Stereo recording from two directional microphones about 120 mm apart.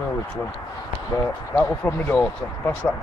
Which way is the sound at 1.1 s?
25° left (ahead or behind).